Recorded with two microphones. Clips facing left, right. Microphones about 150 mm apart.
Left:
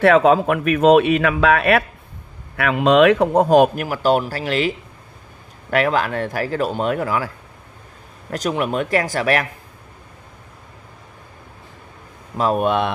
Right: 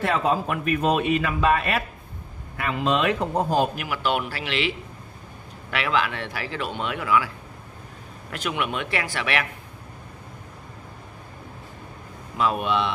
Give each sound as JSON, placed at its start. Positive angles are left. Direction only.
{"t": 0.0, "sound": "speech", "side_deg": 75}
{"t": 3.7, "sound": "a man's voice", "side_deg": 40}
{"t": 8.3, "sound": "a man's voice", "side_deg": 40}
{"t": 12.4, "sound": "speech", "side_deg": 40}